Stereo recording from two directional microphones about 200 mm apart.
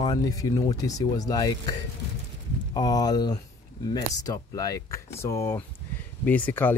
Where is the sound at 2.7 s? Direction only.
20° left (ahead or behind).